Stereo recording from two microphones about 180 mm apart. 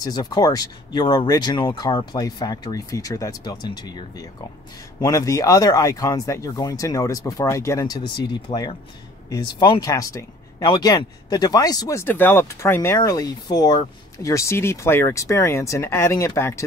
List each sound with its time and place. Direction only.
0.0 s speech: 20° left (ahead or behind)